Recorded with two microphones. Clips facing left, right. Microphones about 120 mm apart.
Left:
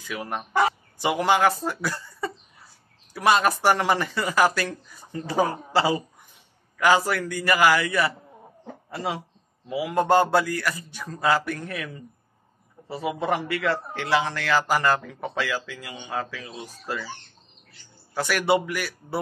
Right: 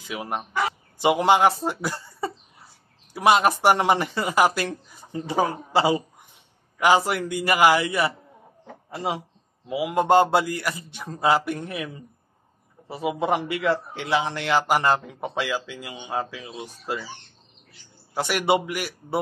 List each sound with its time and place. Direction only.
0.0 s a man's voice: 20° right (ahead or behind)
18.1 s a man's voice: 20° right (ahead or behind)